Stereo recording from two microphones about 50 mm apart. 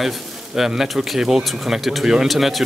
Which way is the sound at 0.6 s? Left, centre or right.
Centre.